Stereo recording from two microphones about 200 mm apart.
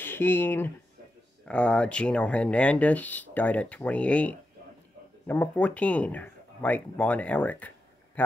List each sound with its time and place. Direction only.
0.0 s speech: 10° left (ahead or behind)